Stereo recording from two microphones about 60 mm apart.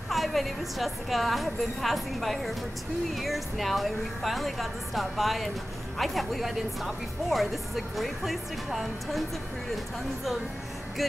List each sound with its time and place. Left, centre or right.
0.1 s speech: centre
11.0 s speech: centre